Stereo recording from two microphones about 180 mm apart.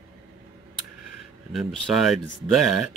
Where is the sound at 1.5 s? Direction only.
Centre (ahead or behind).